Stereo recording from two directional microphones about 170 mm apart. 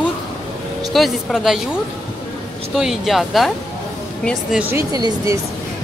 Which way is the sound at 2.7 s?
Centre (ahead or behind).